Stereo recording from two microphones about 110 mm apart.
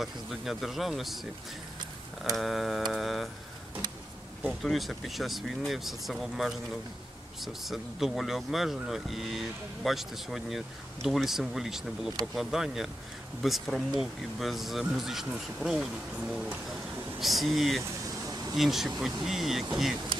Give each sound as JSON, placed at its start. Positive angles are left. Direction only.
{"t": 0.0, "sound": "speech", "side_deg": 0}
{"t": 2.3, "sound": "speech", "side_deg": 0}
{"t": 4.4, "sound": "speech", "side_deg": 0}
{"t": 17.2, "sound": "speech", "side_deg": 0}
{"t": 18.2, "sound": "a sound", "side_deg": -35}
{"t": 18.6, "sound": "speech", "side_deg": -5}